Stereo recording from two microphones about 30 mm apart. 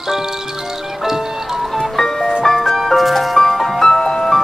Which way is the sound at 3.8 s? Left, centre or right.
Centre.